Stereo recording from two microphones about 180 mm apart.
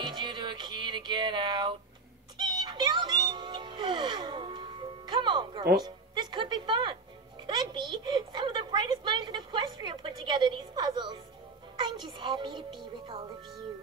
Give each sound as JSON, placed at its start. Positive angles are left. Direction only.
{"t": 0.0, "sound": "music", "side_deg": -25}
{"t": 5.9, "sound": "a woman's voice", "side_deg": -25}
{"t": 7.4, "sound": "music", "side_deg": -25}
{"t": 7.9, "sound": "a woman's voice", "side_deg": -25}
{"t": 11.8, "sound": "music", "side_deg": -25}